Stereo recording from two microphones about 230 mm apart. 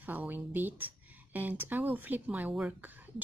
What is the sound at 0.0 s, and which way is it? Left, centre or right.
A woman's voice, centre.